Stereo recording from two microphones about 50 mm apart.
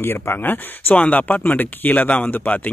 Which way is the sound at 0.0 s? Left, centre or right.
Left.